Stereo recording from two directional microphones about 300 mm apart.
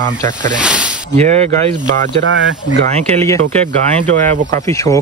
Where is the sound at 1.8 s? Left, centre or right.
Right.